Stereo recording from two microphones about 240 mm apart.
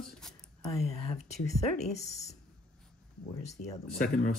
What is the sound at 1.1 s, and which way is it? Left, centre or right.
Speech, left.